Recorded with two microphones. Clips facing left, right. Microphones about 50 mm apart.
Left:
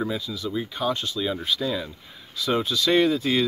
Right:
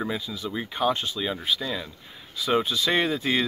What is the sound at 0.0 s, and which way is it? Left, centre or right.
Speech, right.